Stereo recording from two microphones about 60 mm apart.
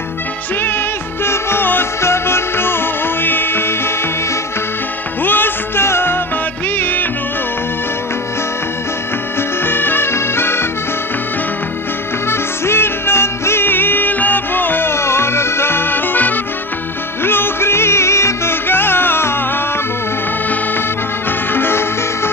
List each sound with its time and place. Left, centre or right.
1.2 s music: left
5.2 s music: left
9.7 s music: left
12.3 s music: left
21.5 s music: left